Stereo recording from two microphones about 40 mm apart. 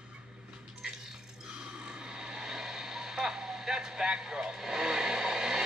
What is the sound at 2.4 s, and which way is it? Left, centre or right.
Vehicle, centre.